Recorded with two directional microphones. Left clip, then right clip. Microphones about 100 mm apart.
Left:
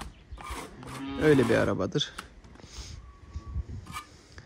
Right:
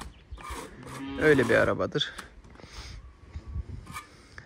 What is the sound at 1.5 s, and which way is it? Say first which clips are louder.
Speech: right 3 dB; 45° left (ahead or behind).